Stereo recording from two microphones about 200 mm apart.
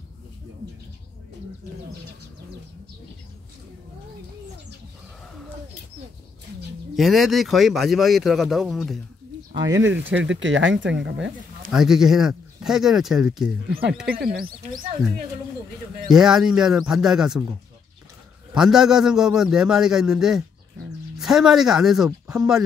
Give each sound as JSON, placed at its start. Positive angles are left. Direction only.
{"t": 7.0, "sound": "speech", "side_deg": 0}
{"t": 10.1, "sound": "speech", "side_deg": -65}
{"t": 11.7, "sound": "speech", "side_deg": 0}
{"t": 14.2, "sound": "speech", "side_deg": -50}
{"t": 16.1, "sound": "speech", "side_deg": -5}
{"t": 18.5, "sound": "speech", "side_deg": -5}